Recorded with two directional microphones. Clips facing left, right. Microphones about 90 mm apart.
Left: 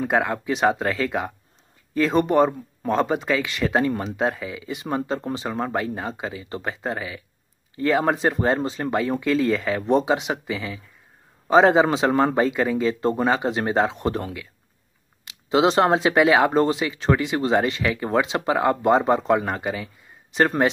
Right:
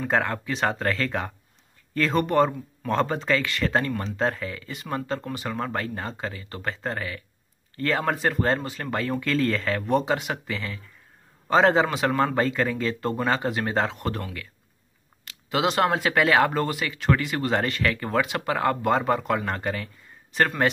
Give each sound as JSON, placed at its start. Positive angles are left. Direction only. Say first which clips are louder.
{"t": 0.0, "sound": "speech", "louder": "left 3 dB", "side_deg": 15}